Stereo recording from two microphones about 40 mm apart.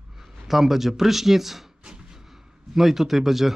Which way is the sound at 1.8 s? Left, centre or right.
Centre.